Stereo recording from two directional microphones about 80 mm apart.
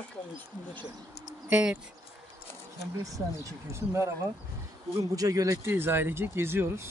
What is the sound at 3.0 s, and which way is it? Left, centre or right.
Speech, right.